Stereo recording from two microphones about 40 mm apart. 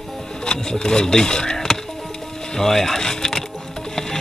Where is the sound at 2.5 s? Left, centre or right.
Centre.